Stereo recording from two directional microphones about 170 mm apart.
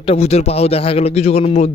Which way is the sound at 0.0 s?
35° left (ahead or behind).